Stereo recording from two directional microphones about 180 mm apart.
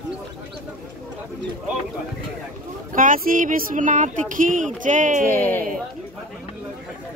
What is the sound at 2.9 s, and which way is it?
Speech, 50° right (ahead or behind).